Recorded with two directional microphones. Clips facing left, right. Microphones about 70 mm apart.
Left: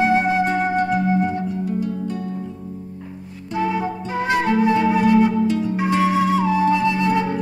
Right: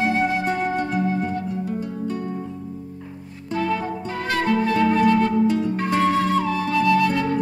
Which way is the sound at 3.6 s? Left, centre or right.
Centre.